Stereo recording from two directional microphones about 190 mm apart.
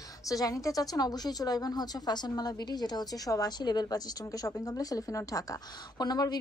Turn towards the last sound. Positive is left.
turn(degrees=20)  # may be behind; listen again after turning